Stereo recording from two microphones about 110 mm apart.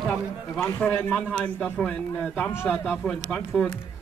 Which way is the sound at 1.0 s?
10° left (ahead or behind).